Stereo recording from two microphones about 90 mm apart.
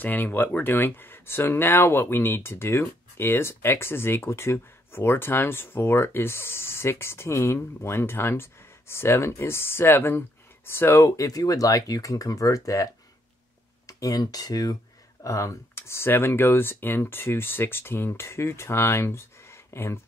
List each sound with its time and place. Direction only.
0.0 s speech: 20° left (ahead or behind)